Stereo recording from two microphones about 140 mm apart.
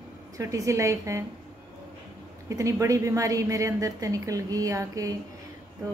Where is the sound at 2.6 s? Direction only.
25° right (ahead or behind).